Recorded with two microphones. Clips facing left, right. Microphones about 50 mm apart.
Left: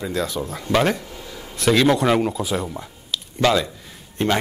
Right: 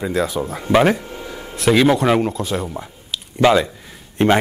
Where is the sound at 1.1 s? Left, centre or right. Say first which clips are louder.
Right 5 dB; right.